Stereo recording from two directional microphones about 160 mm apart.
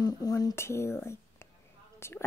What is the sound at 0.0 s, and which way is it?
Speech, 25° left (ahead or behind).